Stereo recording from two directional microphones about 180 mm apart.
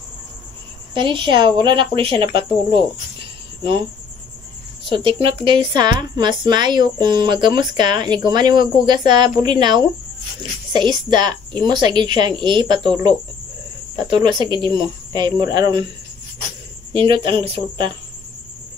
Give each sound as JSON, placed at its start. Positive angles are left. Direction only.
{"t": 0.9, "sound": "speech", "side_deg": -25}
{"t": 4.8, "sound": "speech", "side_deg": -25}
{"t": 16.9, "sound": "speech", "side_deg": -30}